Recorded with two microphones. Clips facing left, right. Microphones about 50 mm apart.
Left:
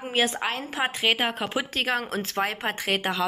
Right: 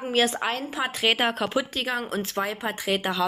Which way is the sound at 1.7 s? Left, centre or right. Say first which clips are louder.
Left 1 dB; left.